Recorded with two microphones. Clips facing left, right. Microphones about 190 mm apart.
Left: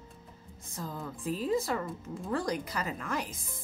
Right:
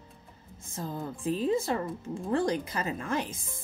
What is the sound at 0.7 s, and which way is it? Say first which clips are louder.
Speech: right 4 dB; 25° right (ahead or behind).